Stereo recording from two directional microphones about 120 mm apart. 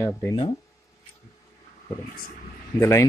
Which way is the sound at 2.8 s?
25° left (ahead or behind).